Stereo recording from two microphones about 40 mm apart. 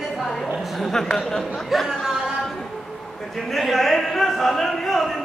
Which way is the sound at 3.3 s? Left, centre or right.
Centre.